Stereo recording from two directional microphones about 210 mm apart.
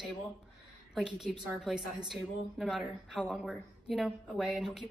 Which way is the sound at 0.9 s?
5° right (ahead or behind).